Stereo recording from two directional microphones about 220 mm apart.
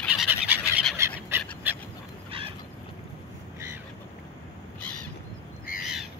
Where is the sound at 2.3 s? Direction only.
25° right (ahead or behind).